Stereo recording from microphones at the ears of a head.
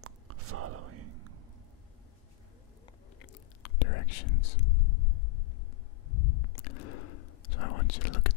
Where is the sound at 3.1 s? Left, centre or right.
Left.